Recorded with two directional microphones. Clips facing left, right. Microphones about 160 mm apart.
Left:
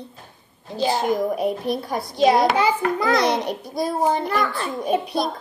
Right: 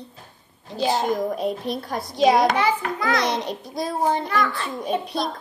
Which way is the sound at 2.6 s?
25° left (ahead or behind).